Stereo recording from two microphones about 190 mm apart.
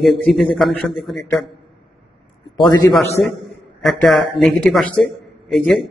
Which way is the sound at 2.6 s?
20° left (ahead or behind).